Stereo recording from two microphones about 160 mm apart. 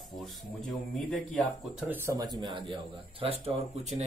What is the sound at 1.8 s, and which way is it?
Speech, 15° right (ahead or behind).